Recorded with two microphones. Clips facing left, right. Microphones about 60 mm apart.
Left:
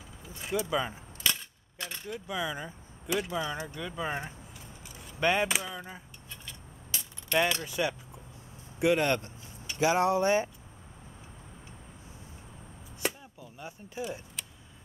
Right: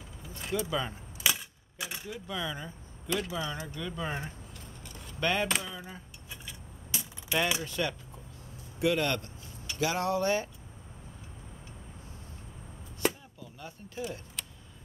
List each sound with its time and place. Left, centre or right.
0.3 s speech: centre
1.2 s a sound: centre
2.1 s speech: centre
5.5 s a sound: centre
6.3 s keys jangling: centre
7.6 s speech: centre
13.0 s chop: centre
13.4 s speech: centre
14.4 s vehicle: centre